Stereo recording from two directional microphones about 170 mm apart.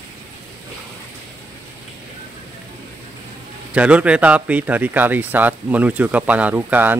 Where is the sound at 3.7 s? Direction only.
5° right (ahead or behind).